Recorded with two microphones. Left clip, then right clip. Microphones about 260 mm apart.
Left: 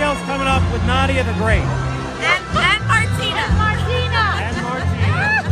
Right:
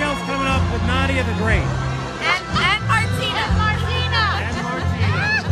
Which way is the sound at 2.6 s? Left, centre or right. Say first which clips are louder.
Left 2 dB; centre.